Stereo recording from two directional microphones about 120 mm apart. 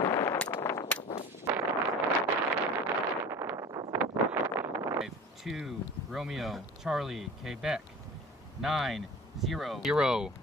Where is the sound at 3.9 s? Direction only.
25° right (ahead or behind).